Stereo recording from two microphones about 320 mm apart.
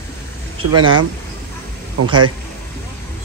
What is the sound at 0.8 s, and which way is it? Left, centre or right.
Speech, centre.